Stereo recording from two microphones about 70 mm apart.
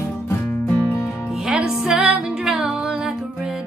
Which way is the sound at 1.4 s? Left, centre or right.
Centre.